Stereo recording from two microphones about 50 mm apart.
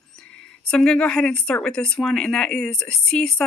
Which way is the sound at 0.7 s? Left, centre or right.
Centre.